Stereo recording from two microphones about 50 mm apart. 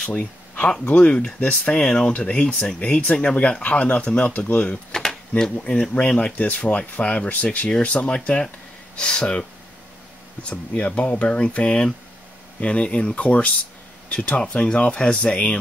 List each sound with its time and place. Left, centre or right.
0.0 s speech: left
10.5 s speech: left